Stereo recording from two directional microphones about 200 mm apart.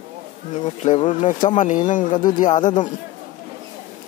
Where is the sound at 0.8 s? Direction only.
30° left (ahead or behind).